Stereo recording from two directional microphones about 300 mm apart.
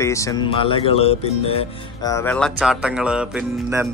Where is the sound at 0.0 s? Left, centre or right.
Centre.